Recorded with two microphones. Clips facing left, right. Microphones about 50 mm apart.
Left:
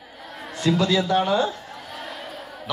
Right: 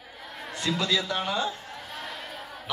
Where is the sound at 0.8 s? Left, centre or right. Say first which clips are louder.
Left 7 dB; left.